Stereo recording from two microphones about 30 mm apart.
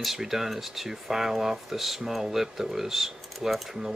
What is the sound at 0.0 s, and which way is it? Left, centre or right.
Speech, centre.